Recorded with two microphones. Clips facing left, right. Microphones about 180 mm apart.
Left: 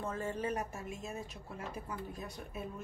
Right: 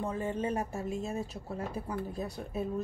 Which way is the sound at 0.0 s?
15° right (ahead or behind).